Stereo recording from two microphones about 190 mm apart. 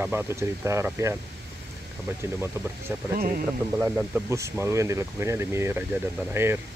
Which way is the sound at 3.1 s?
50° right (ahead or behind).